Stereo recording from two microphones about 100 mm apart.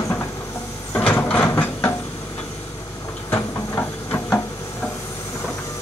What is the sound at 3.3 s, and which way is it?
Train, 25° left (ahead or behind).